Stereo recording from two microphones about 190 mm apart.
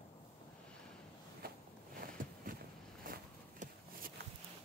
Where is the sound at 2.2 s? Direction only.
45° right (ahead or behind).